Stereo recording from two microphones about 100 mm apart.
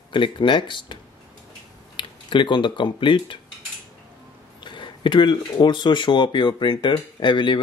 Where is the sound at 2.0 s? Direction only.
55° left (ahead or behind).